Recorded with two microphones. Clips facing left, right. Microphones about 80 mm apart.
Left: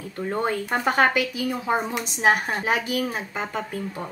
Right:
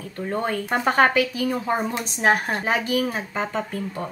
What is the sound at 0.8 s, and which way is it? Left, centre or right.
Speech, centre.